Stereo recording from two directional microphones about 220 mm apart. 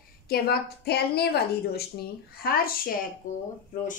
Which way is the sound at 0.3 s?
45° left (ahead or behind).